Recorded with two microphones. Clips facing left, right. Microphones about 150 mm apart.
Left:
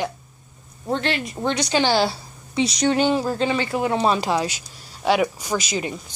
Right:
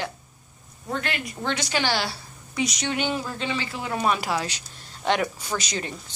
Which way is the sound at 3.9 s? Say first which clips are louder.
Left 2 dB; 25° left (ahead or behind).